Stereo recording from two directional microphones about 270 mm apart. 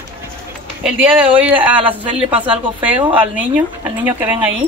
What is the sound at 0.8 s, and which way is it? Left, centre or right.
A woman's voice, centre.